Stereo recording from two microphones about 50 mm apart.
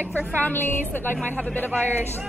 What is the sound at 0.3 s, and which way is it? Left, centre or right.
A woman's voice, left.